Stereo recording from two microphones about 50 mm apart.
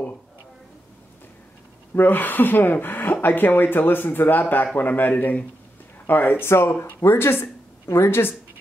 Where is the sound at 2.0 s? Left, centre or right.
Left.